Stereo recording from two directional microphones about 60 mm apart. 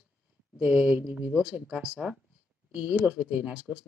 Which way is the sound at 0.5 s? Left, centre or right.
Right.